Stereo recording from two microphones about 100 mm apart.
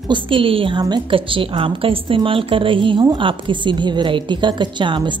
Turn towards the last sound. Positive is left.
turn(degrees=-55)  # may be behind; listen again after turning